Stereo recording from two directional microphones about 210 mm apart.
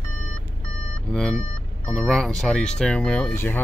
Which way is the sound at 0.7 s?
90° right.